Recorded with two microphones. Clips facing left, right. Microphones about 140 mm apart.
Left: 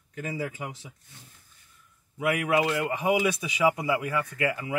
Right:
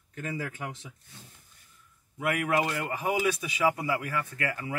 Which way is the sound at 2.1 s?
10° left (ahead or behind).